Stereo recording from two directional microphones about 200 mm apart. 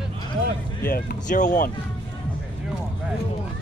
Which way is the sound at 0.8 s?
45° left (ahead or behind).